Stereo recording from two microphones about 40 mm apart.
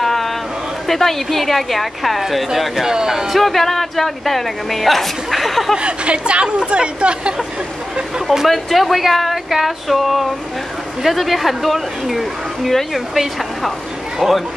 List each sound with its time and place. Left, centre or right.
0.0 s a sound: centre
0.8 s speech: centre
2.9 s speech: centre
3.3 s speech: centre
5.8 s speech: right
8.3 s speech: centre